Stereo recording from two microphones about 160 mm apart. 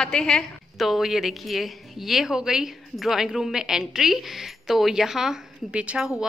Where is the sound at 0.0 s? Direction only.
5° left (ahead or behind).